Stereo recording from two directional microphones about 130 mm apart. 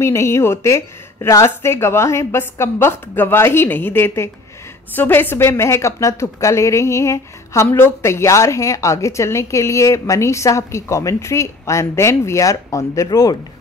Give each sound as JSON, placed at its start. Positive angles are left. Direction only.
{"t": 0.0, "sound": "a woman's voice", "side_deg": 20}